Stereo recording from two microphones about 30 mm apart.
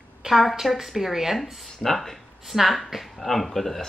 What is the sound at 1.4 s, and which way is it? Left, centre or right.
Speech, centre.